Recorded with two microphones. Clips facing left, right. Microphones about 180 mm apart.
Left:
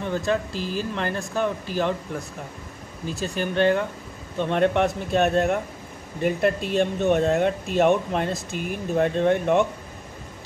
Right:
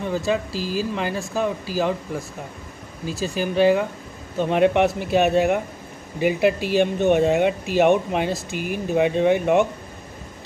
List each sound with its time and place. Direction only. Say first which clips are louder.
0.0 s speech: right 1 dB; 5° right (ahead or behind)
0.5 s speech: right 2 dB; 35° right (ahead or behind)
0.9 s speech: right 2 dB; 5° right (ahead or behind)